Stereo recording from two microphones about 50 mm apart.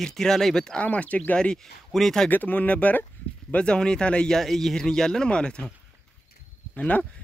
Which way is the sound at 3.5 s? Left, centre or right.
Centre.